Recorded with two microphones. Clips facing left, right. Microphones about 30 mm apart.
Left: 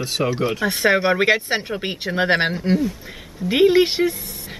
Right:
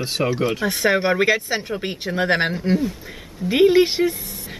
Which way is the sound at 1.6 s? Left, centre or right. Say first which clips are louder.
Left 1 dB; centre.